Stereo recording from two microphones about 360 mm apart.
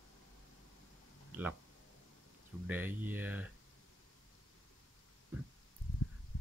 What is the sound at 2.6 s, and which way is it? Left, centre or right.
Speech, centre.